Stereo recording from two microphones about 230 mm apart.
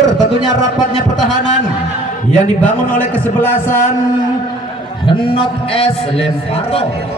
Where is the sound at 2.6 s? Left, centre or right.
Centre.